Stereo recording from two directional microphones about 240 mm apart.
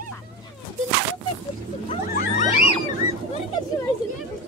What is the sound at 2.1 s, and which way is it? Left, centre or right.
Wild animals, left.